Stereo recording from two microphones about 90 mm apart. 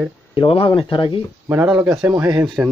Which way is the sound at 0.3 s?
75° left (ahead or behind).